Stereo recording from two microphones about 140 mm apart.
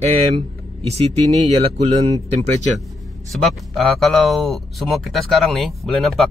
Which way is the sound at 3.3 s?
Centre (ahead or behind).